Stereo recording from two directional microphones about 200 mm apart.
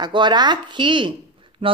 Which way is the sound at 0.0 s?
20° right (ahead or behind).